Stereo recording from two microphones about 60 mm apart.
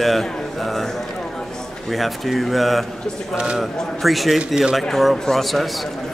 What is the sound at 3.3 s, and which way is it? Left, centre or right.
Speech, centre.